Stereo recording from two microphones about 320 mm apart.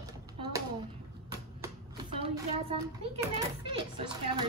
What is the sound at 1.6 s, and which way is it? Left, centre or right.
A child's voice, centre.